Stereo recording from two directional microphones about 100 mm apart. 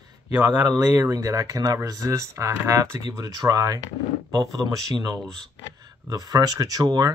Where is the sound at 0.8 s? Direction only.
35° right (ahead or behind).